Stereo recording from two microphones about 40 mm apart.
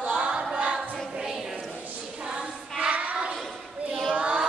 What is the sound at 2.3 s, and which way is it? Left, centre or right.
Choir, right.